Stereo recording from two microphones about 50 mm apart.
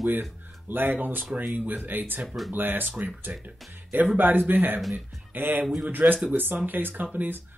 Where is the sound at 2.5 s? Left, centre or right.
Right.